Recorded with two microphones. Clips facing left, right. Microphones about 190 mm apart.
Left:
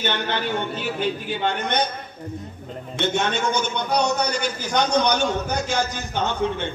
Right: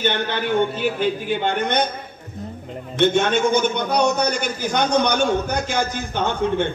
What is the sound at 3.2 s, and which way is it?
A man's voice, 55° right (ahead or behind).